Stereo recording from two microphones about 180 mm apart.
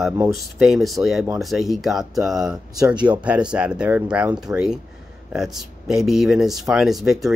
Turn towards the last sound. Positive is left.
turn(degrees=0)  # may be behind; listen again after turning